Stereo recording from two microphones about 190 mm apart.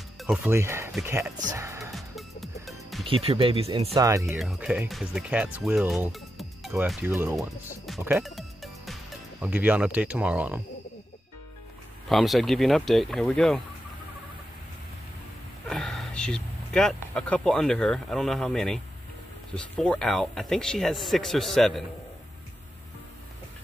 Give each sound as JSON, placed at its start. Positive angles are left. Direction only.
{"t": 0.2, "sound": "speech", "side_deg": -5}
{"t": 1.9, "sound": "music", "side_deg": 0}
{"t": 3.1, "sound": "speech", "side_deg": -30}
{"t": 3.9, "sound": "speech", "side_deg": -15}
{"t": 4.4, "sound": "speech", "side_deg": 0}
{"t": 7.3, "sound": "speech", "side_deg": 0}
{"t": 8.0, "sound": "music", "side_deg": -5}
{"t": 9.4, "sound": "speech", "side_deg": -10}
{"t": 12.1, "sound": "speech", "side_deg": 0}
{"t": 15.7, "sound": "speech", "side_deg": 0}